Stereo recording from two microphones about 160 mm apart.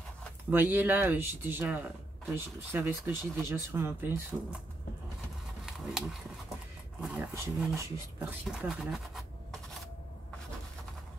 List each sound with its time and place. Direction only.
0.5 s speech: 10° right (ahead or behind)
5.7 s a sound: centre (ahead or behind)
7.0 s speech: 5° right (ahead or behind)
7.3 s speech: 15° right (ahead or behind); by 9.6 s centre (ahead or behind)